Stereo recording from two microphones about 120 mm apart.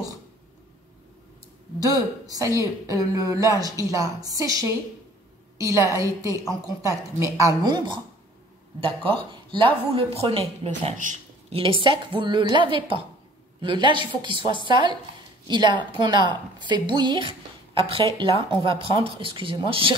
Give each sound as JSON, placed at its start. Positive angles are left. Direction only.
{"t": 1.8, "sound": "a woman's voice", "side_deg": -30}
{"t": 11.5, "sound": "a woman's voice", "side_deg": -50}